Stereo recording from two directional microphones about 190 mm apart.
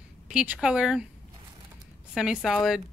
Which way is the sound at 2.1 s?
Centre (ahead or behind).